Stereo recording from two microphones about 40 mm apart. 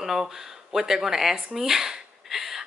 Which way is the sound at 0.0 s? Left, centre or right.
Centre.